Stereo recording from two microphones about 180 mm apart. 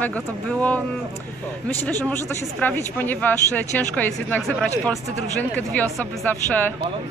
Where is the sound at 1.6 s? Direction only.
10° left (ahead or behind).